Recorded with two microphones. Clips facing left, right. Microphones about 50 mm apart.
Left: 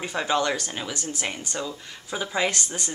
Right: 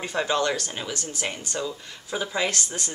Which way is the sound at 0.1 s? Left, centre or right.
Centre.